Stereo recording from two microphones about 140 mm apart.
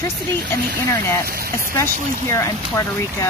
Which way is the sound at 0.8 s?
20° left (ahead or behind).